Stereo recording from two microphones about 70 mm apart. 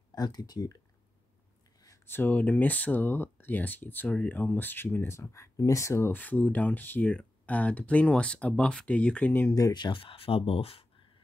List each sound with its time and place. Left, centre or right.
0.1 s speech: left
2.0 s speech: left
6.1 s speech: left
9.5 s speech: left